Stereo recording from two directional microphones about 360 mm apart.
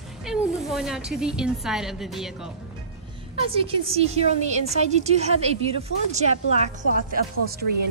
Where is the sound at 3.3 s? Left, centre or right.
Centre.